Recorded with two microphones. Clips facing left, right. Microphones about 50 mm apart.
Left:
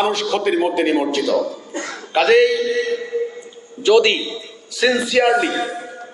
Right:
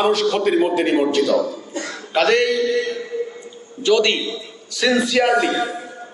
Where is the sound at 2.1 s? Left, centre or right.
Centre.